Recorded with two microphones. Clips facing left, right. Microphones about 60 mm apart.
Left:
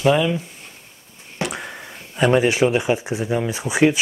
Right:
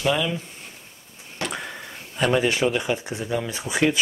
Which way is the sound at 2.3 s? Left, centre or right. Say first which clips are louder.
Left 4 dB; centre.